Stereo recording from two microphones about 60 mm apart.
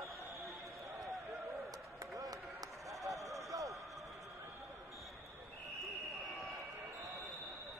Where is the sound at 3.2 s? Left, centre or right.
Right.